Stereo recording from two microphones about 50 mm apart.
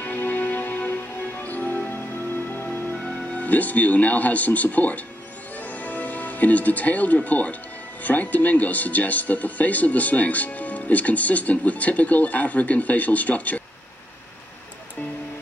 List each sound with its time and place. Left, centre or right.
0.0 s music: left
2.5 s speech: left
5.6 s music: left
8.0 s speech: left